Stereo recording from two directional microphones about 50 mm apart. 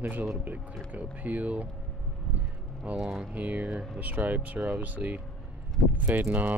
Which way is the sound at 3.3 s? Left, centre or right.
Right.